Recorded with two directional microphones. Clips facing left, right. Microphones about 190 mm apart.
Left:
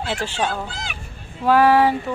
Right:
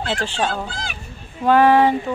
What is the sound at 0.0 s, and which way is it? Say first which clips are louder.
Speech: right 1 dB; 10° left (ahead or behind).